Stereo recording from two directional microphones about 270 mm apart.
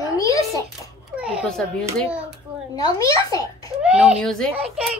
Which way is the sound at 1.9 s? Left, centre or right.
Centre.